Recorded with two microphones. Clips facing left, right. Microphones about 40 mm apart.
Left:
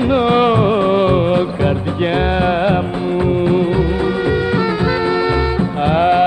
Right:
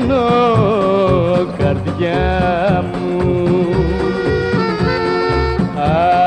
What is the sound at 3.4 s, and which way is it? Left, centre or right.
Music of bollywood, left.